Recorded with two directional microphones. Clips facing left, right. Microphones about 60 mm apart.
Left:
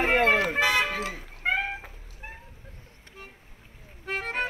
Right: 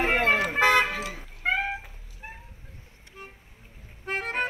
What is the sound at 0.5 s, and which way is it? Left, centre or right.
Vehicle, right.